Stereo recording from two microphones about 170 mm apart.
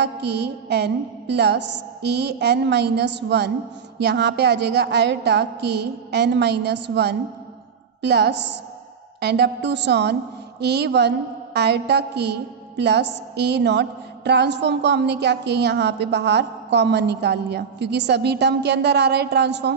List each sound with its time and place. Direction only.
0.0 s a woman's voice: 85° right